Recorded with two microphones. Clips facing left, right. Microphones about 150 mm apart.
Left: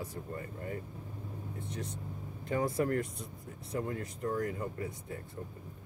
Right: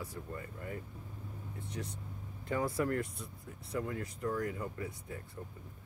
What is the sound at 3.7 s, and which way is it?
Speech, 35° left (ahead or behind).